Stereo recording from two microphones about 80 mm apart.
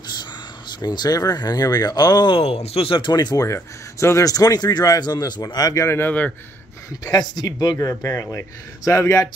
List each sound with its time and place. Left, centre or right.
0.7 s speech: left
3.3 s speech: left
5.9 s a man's voice: left
6.9 s speech: left